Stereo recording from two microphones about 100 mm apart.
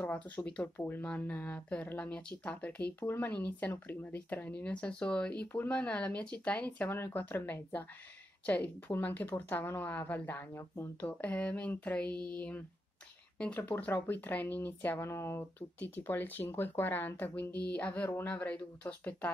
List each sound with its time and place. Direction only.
0.0 s speech: 15° left (ahead or behind)